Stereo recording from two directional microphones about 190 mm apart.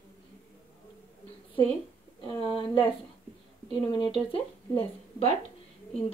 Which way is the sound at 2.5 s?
25° left (ahead or behind).